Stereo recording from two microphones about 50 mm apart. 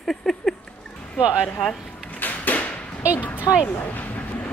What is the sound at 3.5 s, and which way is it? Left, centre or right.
Speech, left.